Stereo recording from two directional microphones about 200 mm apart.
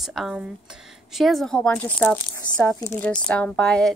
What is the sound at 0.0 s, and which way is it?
A woman's voice, centre (ahead or behind).